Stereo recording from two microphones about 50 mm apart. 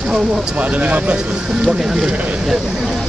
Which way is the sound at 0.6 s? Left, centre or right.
Right.